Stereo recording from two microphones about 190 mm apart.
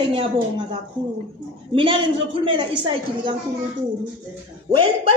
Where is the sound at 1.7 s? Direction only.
25° right (ahead or behind).